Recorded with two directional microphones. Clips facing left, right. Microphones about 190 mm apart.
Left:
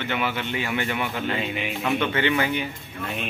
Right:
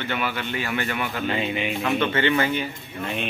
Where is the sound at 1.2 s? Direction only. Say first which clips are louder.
Right 2 dB; centre (ahead or behind).